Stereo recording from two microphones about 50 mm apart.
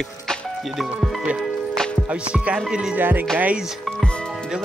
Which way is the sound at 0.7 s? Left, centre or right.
Centre.